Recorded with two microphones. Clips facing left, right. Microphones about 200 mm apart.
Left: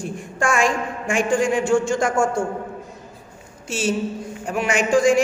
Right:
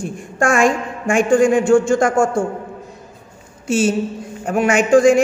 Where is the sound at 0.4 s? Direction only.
50° right (ahead or behind).